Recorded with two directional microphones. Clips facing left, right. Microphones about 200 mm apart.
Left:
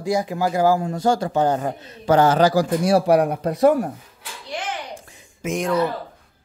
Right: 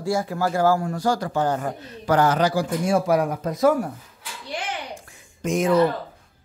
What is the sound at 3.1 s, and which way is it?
Speech, 65° left (ahead or behind).